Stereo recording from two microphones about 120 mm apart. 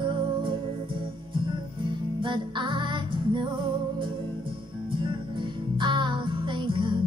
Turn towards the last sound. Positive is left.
turn(degrees=-40)  # may be behind; listen again after turning